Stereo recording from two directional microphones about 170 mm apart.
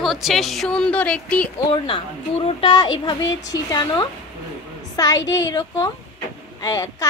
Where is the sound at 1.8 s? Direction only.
30° left (ahead or behind).